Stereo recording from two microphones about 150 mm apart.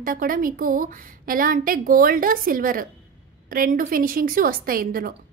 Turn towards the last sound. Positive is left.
turn(degrees=-75)  # may be behind; listen again after turning